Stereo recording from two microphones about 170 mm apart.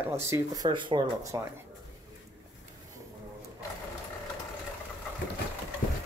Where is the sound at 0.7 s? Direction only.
30° right (ahead or behind).